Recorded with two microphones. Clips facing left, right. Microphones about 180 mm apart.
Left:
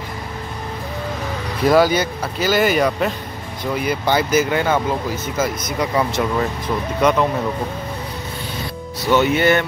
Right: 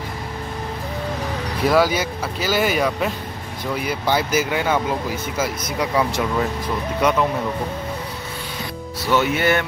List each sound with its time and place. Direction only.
1.7 s speech: centre (ahead or behind)
9.0 s speech: 5° right (ahead or behind)